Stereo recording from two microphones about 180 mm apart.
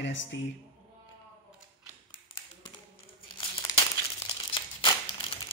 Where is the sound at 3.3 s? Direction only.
25° left (ahead or behind).